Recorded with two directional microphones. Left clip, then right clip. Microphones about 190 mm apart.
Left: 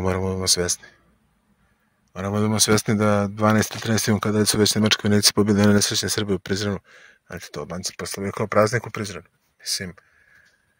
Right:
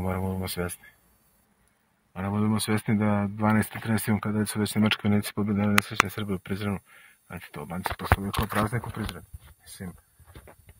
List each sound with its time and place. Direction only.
0.0 s speech: 30° left (ahead or behind)
2.3 s speech: 40° left (ahead or behind)
6.0 s speech: 30° left (ahead or behind)